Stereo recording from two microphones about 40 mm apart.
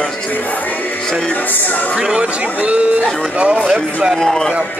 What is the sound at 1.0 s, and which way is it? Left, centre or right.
Speech, centre.